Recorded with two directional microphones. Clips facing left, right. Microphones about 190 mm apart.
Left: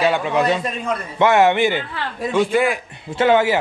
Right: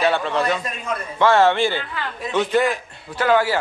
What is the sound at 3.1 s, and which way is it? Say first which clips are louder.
Speech: left 3 dB; 20° left (ahead or behind).